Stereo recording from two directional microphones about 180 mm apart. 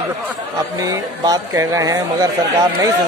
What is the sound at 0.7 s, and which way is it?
Speech, 20° right (ahead or behind).